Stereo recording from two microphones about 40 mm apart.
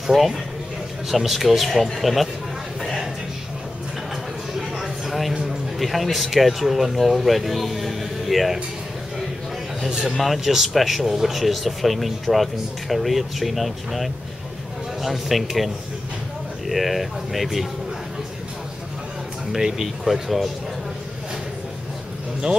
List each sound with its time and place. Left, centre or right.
0.0 s speech: centre
2.8 s a sound: centre
4.6 s a sound: centre
5.5 s speech: centre
9.8 s a man's voice: centre
10.1 s speech: centre
19.5 s speech: centre